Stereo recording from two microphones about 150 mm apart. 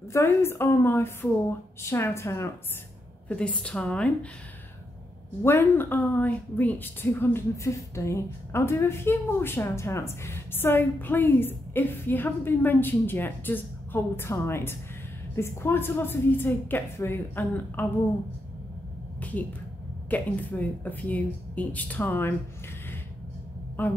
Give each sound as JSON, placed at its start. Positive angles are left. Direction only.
{"t": 0.1, "sound": "a woman's voice", "side_deg": 15}
{"t": 3.3, "sound": "a woman's voice", "side_deg": 10}
{"t": 5.4, "sound": "a woman's voice", "side_deg": 15}
{"t": 19.1, "sound": "a sound", "side_deg": 10}
{"t": 20.1, "sound": "a woman's voice", "side_deg": 10}
{"t": 23.8, "sound": "a woman's voice", "side_deg": 10}